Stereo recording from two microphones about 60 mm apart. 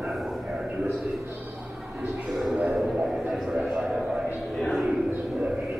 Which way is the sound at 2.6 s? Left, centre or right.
Centre.